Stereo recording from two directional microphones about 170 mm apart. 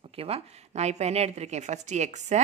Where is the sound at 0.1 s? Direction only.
35° right (ahead or behind).